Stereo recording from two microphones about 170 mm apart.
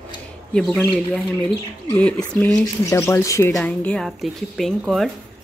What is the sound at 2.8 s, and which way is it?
Speech, 15° left (ahead or behind).